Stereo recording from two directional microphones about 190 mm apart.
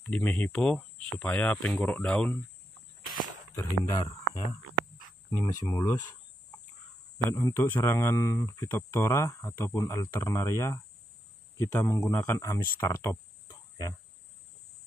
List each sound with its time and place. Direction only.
0.0 s speech: 10° left (ahead or behind)
3.5 s speech: 15° left (ahead or behind)
5.3 s speech: 20° left (ahead or behind)
7.2 s speech: 15° left (ahead or behind)